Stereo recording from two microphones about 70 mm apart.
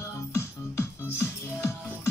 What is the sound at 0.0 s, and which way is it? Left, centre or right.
Music, left.